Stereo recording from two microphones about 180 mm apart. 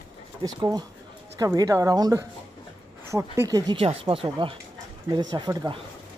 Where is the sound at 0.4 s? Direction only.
20° right (ahead or behind).